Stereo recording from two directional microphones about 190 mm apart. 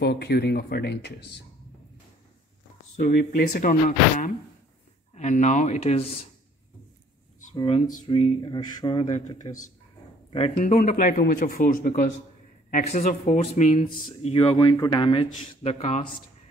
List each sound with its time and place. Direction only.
0.0 s speech: 60° left (ahead or behind)
3.0 s speech: 45° left (ahead or behind)
5.1 s speech: 40° left (ahead or behind)
7.5 s speech: 25° left (ahead or behind)